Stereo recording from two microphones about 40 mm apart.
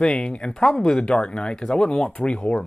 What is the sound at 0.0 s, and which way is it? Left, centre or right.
Speech, left.